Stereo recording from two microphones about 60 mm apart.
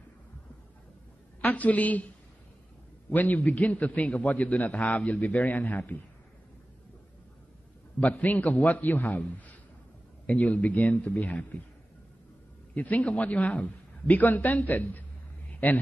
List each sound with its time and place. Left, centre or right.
1.4 s a man's voice: left
3.1 s a man's voice: left
8.0 s a man's voice: left
12.7 s a man's voice: left
15.5 s a sound: left